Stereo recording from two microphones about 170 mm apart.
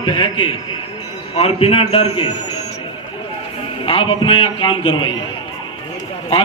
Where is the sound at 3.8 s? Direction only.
30° left (ahead or behind).